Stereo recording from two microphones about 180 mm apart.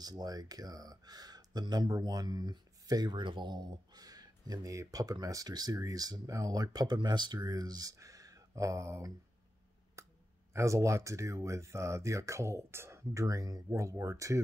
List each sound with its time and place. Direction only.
0.0 s speech: 20° right (ahead or behind)
10.0 s clicking: 15° right (ahead or behind)
10.5 s speech: 15° right (ahead or behind)